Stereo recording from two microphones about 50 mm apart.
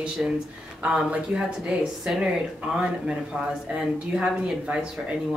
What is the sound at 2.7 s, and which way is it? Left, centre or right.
Speech, centre.